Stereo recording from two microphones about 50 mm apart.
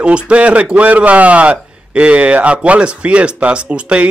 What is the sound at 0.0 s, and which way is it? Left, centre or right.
A man's voice, right.